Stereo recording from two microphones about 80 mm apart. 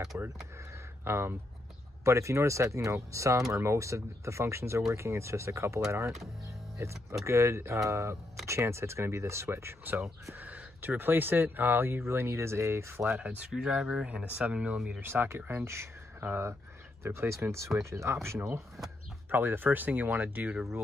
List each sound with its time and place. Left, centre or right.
0.1 s speech: right
10.3 s speech: right
13.1 s speech: centre
15.0 s speech: right